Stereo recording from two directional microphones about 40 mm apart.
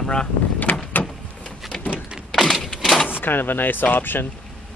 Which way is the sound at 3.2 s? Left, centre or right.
Left.